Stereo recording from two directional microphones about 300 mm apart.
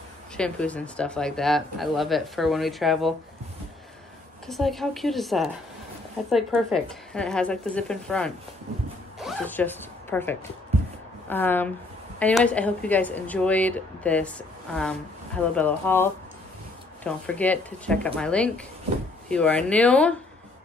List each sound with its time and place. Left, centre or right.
0.4 s speech: centre
4.5 s speech: centre
9.2 s zipper: centre
11.2 s speech: centre
15.5 s speech: centre